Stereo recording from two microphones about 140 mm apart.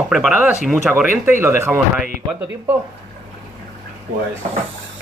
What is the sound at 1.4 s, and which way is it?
Speech, 20° right (ahead or behind).